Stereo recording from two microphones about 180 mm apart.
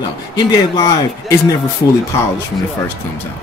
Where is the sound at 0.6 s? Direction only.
20° left (ahead or behind).